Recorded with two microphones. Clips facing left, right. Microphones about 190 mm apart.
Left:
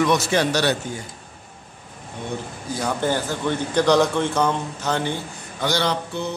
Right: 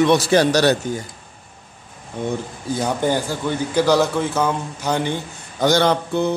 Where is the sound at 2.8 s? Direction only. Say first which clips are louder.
Right 2 dB; 15° right (ahead or behind).